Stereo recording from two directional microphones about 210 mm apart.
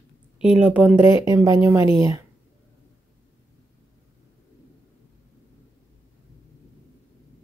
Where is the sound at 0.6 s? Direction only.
5° right (ahead or behind).